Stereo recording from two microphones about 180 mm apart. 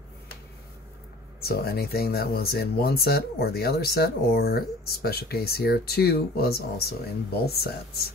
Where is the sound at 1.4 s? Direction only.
60° left (ahead or behind).